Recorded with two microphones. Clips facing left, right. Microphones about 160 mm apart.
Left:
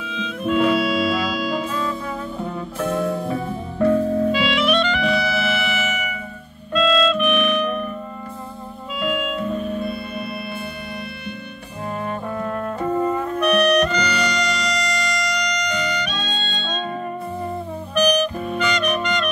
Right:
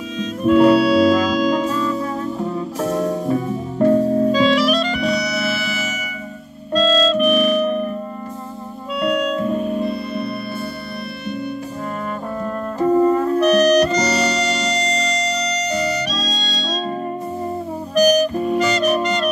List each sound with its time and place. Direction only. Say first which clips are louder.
0.2 s music: right 6 dB; 40° right (ahead or behind)
9.8 s music: right 4 dB; 35° right (ahead or behind)
12.7 s music: right 8 dB; 30° right (ahead or behind)
17.9 s music: right 4 dB; 35° right (ahead or behind)